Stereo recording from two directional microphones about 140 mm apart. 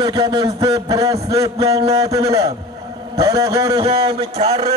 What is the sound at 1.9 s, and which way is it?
A man's voice, 25° right (ahead or behind).